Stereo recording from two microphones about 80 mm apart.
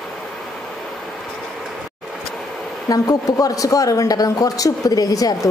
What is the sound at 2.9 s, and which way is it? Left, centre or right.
Speech, left.